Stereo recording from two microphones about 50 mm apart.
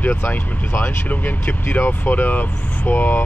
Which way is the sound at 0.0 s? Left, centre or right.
Left.